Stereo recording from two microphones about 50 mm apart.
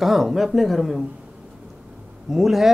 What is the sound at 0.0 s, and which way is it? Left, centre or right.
Speech, centre.